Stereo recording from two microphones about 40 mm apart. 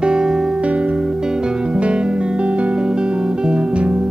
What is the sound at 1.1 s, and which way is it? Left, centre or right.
Music, centre.